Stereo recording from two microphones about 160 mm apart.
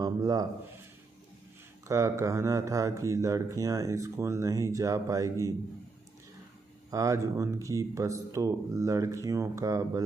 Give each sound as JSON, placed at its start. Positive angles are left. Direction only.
{"t": 0.0, "sound": "a sound", "side_deg": -25}
{"t": 1.9, "sound": "speech", "side_deg": -20}
{"t": 6.9, "sound": "speech", "side_deg": -20}